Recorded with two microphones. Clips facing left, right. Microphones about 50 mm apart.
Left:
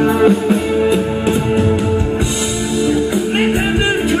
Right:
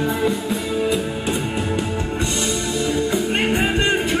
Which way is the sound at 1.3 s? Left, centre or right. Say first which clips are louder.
Left 10 dB; centre.